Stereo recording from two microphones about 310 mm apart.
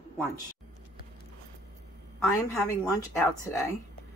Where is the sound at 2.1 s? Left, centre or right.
Centre.